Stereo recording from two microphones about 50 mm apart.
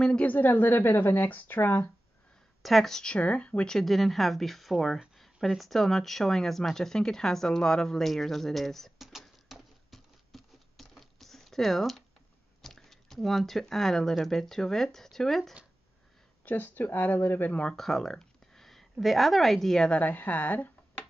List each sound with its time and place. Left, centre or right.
0.2 s a woman's voice: left
2.6 s speech: centre
3.0 s speech: left
3.6 s speech: centre
5.1 s a sound: centre
5.5 s speech: centre
9.2 s patter: centre
12.6 s speech: centre
16.4 s a woman's voice: left
17.5 s speech: left
17.7 s speech: centre
19.9 s a woman's voice: left